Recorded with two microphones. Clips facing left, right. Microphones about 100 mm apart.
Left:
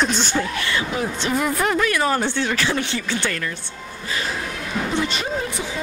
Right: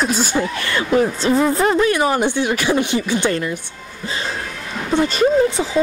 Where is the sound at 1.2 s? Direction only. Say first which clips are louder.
Right 2 dB; 30° right (ahead or behind).